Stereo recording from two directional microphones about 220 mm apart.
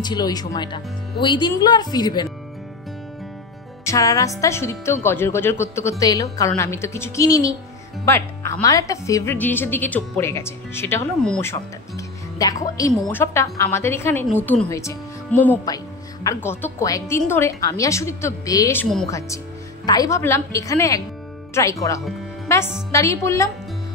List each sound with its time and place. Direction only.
0.0 s speech: 20° left (ahead or behind)
3.8 s speech: 15° left (ahead or behind)
12.4 s a woman's voice: 15° left (ahead or behind)